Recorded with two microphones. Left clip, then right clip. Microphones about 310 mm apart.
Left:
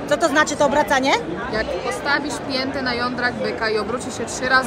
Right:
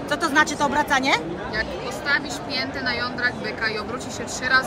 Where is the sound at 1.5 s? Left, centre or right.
Centre.